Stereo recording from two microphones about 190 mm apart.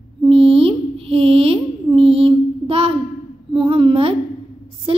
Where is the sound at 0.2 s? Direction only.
30° right (ahead or behind).